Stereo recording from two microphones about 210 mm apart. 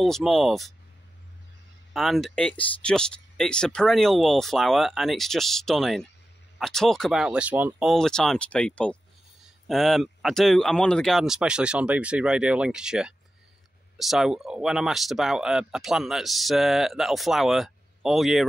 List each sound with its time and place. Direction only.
0.0 s speech: centre (ahead or behind)
2.0 s speech: centre (ahead or behind)